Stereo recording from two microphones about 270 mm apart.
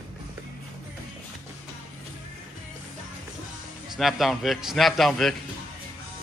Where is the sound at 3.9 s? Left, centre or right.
Centre.